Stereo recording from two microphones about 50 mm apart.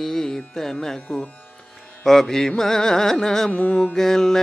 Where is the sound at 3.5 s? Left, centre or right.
Left.